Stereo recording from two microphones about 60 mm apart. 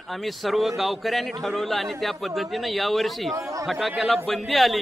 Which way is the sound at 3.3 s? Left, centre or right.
Right.